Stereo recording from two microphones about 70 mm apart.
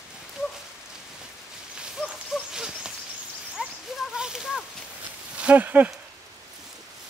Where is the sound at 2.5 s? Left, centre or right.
Centre.